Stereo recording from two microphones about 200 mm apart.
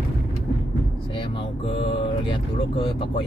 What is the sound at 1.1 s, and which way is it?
Speech, 25° left (ahead or behind).